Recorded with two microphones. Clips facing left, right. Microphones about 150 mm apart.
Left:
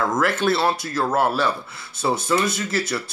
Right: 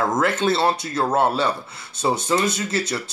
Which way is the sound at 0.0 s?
20° right (ahead or behind).